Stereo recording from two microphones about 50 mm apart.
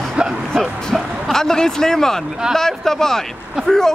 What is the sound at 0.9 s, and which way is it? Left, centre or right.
Speech, centre.